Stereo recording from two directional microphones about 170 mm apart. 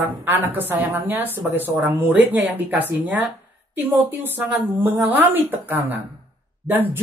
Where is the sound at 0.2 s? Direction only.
10° right (ahead or behind).